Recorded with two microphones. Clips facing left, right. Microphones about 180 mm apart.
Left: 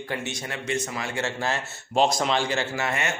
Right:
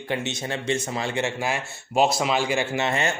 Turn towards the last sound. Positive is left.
turn(degrees=-25)  # may be behind; listen again after turning